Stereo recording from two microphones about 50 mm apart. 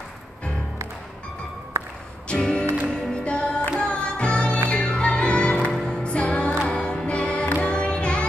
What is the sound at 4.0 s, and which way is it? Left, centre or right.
Music, centre.